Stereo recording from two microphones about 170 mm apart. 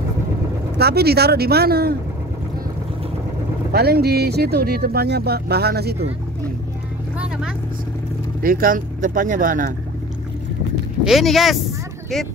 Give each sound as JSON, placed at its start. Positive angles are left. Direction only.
{"t": 0.7, "sound": "speech", "side_deg": -70}
{"t": 3.7, "sound": "speech", "side_deg": -70}
{"t": 8.4, "sound": "speech", "side_deg": -55}
{"t": 11.1, "sound": "speech", "side_deg": 0}